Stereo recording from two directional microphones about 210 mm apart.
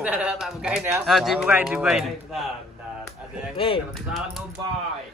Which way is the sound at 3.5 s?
25° left (ahead or behind).